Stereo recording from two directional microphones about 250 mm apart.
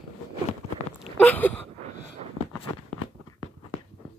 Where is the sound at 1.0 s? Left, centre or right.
Centre.